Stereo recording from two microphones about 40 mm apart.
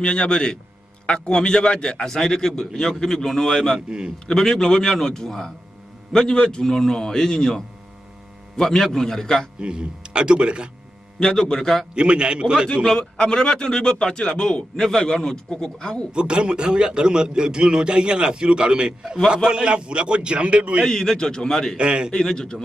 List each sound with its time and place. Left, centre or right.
0.0 s a man's voice: left
6.3 s a man's voice: left
6.6 s a man's voice: centre
9.6 s a man's voice: right
11.1 s a man's voice: centre
11.6 s a man's voice: centre
11.9 s a man's voice: right
13.2 s a man's voice: left
16.1 s a man's voice: right
20.8 s a man's voice: centre
21.7 s a man's voice: right
22.1 s a man's voice: centre